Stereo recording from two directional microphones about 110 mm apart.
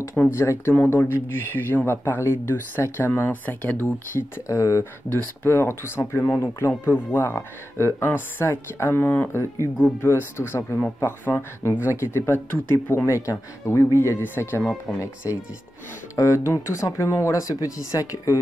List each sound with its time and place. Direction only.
0.3 s speech: 25° left (ahead or behind)
4.1 s speech: 25° left (ahead or behind)
14.6 s speech: 5° left (ahead or behind)
16.2 s speech: 25° left (ahead or behind)